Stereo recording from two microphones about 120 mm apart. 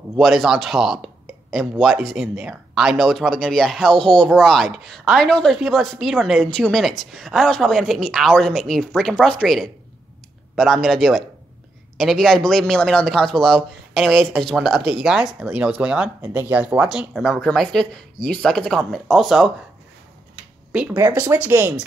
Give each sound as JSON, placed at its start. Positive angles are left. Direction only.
{"t": 0.2, "sound": "speech", "side_deg": 0}
{"t": 20.7, "sound": "speech", "side_deg": -10}